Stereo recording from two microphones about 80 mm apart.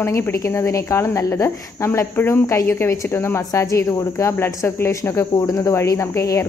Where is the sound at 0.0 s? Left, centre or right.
Left.